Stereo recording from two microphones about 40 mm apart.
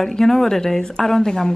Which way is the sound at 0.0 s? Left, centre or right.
Centre.